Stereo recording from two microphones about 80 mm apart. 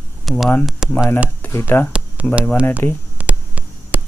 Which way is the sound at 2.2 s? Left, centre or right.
Centre.